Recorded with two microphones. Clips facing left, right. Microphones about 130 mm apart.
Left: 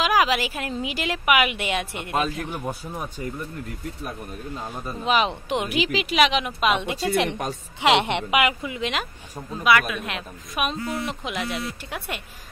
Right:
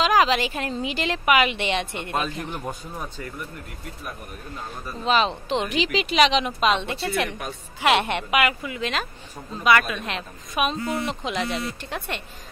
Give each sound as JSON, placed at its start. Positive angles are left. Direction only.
{"t": 0.0, "sound": "speech", "side_deg": 10}
{"t": 4.6, "sound": "speech", "side_deg": 15}
{"t": 7.2, "sound": "a woman's voice", "side_deg": 30}
{"t": 7.8, "sound": "a woman's voice", "side_deg": 20}
{"t": 9.5, "sound": "speech", "side_deg": 5}